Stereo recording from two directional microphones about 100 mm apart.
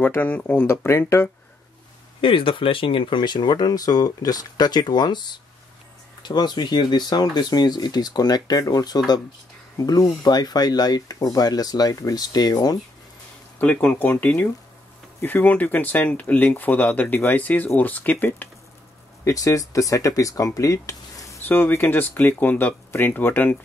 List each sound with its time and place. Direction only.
0.0 s speech: 20° left (ahead or behind)
0.8 s speech: 25° left (ahead or behind)
2.2 s speech: 60° left (ahead or behind); by 12.7 s 40° left (ahead or behind)
13.6 s speech: 15° left (ahead or behind)
19.2 s speech: 35° left (ahead or behind)
21.5 s speech: 20° left (ahead or behind)